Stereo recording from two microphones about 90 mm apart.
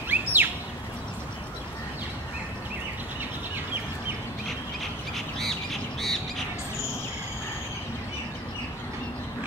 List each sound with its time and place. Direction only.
0.1 s bird: 20° right (ahead or behind)
5.1 s bird: 5° left (ahead or behind)